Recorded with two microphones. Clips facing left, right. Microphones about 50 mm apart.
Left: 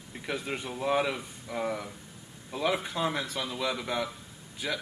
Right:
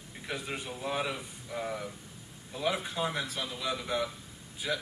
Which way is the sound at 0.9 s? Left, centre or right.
Centre.